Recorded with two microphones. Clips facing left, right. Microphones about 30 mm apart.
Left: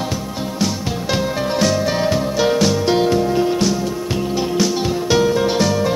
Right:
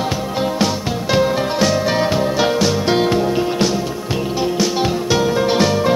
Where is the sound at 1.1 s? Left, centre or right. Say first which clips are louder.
Right 4 dB; centre.